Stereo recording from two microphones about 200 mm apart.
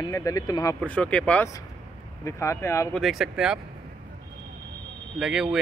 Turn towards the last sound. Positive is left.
turn(degrees=-5)  # may be behind; listen again after turning